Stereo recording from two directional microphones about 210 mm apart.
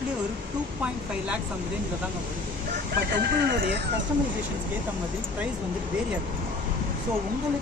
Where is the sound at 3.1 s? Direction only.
50° right (ahead or behind).